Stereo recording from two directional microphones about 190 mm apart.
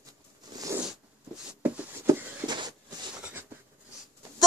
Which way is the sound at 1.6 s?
10° right (ahead or behind).